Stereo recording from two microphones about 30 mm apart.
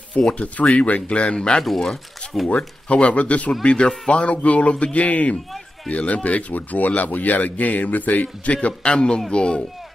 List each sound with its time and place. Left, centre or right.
0.3 s speech: left
1.6 s speech: centre
2.5 s speech: left
3.6 s speech: left
5.0 s speech: left
6.5 s a man's voice: left
8.8 s speech: left